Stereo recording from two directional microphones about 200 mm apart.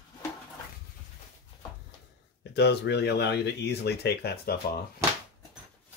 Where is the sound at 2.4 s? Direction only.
55° left (ahead or behind).